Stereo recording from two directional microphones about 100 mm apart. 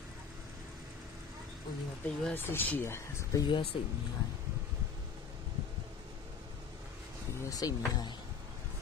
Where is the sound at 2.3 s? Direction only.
20° left (ahead or behind).